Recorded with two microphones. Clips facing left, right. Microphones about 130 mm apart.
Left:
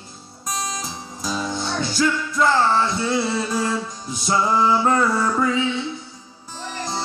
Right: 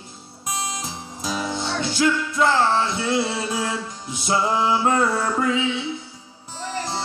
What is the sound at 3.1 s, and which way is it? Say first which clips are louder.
Music: left 1 dB; 5° right (ahead or behind).